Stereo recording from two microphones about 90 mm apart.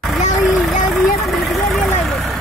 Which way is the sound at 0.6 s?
Centre (ahead or behind).